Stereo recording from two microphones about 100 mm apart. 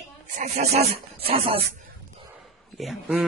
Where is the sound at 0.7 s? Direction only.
75° right (ahead or behind).